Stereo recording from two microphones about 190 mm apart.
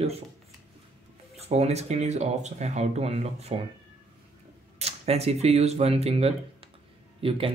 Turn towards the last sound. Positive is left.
turn(degrees=-30)  # may be behind; listen again after turning